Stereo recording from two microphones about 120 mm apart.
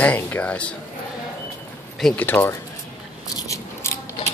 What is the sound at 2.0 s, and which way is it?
Speech, 10° left (ahead or behind).